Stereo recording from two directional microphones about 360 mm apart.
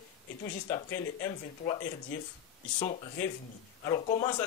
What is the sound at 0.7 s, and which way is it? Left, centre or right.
A man's voice, centre.